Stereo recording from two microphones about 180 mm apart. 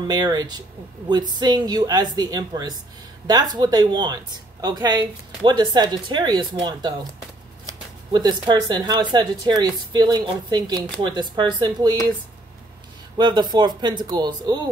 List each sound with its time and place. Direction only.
0.0 s speech: 20° right (ahead or behind)
13.2 s speech: 25° right (ahead or behind)